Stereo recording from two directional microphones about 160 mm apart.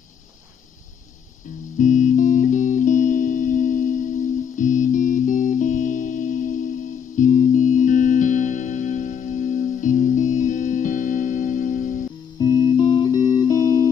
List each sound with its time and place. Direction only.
1.8 s music: 50° left (ahead or behind)
12.4 s music: 25° left (ahead or behind)